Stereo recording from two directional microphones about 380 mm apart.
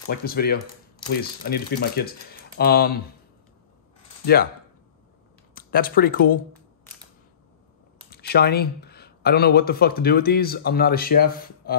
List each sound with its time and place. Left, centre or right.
0.1 s speech: left
5.5 s speech: left
8.1 s speech: left